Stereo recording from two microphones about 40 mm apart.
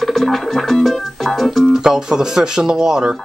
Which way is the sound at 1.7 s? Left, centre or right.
Centre.